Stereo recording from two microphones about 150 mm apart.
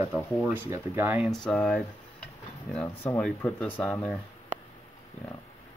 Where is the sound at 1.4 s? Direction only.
5° left (ahead or behind).